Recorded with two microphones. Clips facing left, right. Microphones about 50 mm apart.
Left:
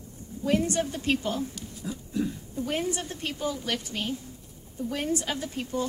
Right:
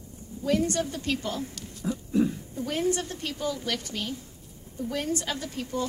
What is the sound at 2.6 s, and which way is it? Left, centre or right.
A woman's voice, centre.